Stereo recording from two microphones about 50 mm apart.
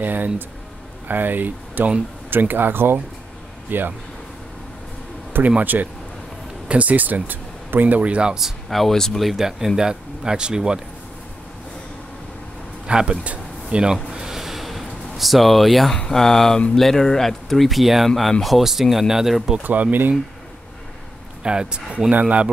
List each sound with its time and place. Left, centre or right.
0.0 s speech: right
5.6 s speech: right
8.4 s speech: centre
9.2 s speech: centre
12.8 s speech: right
14.1 s a sound: centre
16.1 s speech: centre
19.6 s speech: right
21.4 s speech: centre